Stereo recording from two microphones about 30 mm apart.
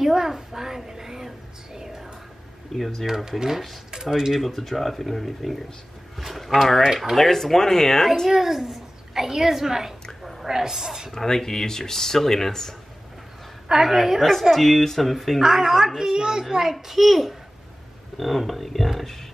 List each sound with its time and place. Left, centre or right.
0.0 s a woman's voice: centre
2.7 s speech: centre
3.3 s a child's voice: centre
4.5 s speech: centre
8.3 s a child's voice: centre
11.1 s speech: centre
13.7 s a child's voice: centre
14.5 s speech: centre
15.4 s a child's voice: centre
16.4 s a child's voice: centre
18.1 s speech: centre